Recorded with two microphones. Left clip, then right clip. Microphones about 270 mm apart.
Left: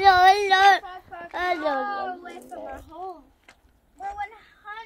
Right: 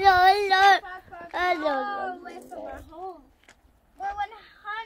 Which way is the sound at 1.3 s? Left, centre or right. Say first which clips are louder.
Even; centre.